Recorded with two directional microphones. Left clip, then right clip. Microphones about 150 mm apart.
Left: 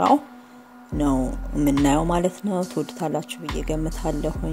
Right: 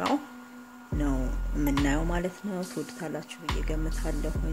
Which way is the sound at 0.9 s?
45° left (ahead or behind).